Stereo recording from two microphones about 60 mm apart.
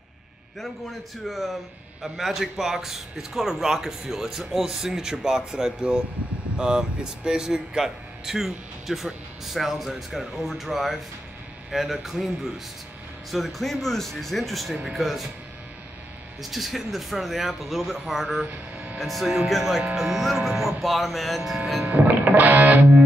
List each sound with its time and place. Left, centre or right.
1.2 s a man's voice: centre
13.3 s speech: centre
16.4 s speech: centre
21.8 s music: right